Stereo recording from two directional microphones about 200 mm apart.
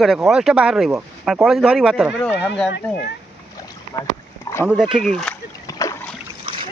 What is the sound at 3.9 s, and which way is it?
Speech, 15° left (ahead or behind).